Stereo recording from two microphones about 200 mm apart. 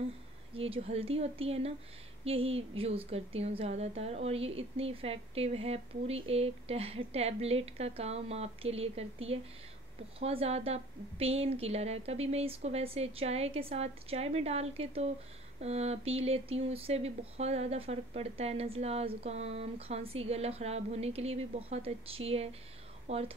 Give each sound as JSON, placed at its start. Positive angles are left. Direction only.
{"t": 0.6, "sound": "a woman's voice", "side_deg": -30}
{"t": 10.2, "sound": "a sound", "side_deg": -30}
{"t": 23.0, "sound": "speech", "side_deg": -30}